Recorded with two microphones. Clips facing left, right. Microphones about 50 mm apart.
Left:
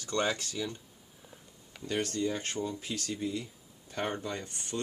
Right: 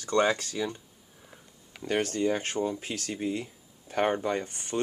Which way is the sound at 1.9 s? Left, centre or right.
Right.